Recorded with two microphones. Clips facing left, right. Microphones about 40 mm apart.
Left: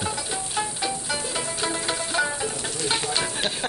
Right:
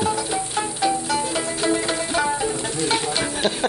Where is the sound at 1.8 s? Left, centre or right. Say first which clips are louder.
Right 3 dB; centre.